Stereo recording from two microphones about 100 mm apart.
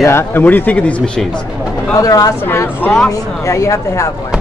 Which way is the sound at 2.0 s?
35° left (ahead or behind).